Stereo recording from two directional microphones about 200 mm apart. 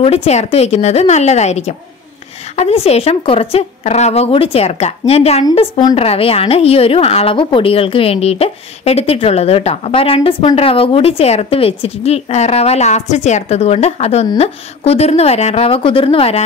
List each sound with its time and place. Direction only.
0.0 s a woman's voice: 30° left (ahead or behind)